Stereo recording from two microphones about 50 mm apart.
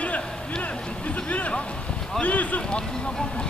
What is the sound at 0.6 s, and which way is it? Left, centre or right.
Music, left.